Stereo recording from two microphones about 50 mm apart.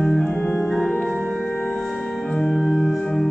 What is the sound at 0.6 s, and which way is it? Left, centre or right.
Music, centre.